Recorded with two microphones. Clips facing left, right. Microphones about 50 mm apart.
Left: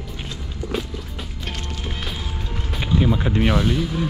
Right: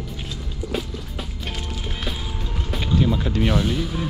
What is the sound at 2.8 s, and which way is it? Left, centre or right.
Music, centre.